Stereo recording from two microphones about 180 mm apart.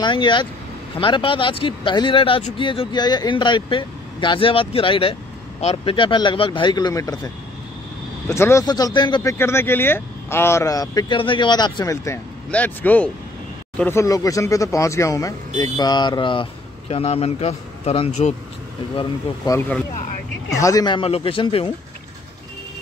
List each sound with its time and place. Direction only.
0.0 s speech: 25° left (ahead or behind)
8.3 s speech: 15° left (ahead or behind); by 18.3 s 35° left (ahead or behind)
18.9 s speech: 20° left (ahead or behind)